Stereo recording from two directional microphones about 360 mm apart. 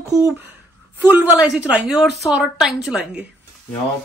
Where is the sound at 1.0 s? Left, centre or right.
Centre.